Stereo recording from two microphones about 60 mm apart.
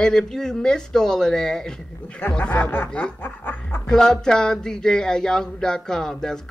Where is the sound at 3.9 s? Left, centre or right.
Centre.